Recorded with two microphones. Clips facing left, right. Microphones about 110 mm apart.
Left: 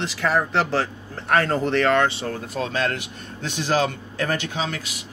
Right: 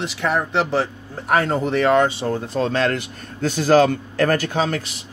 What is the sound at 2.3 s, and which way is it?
Speech, 30° right (ahead or behind).